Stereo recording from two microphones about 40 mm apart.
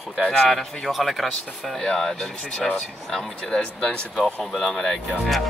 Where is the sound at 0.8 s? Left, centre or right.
Centre.